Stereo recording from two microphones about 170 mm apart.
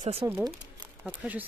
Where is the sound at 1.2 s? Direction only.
5° right (ahead or behind).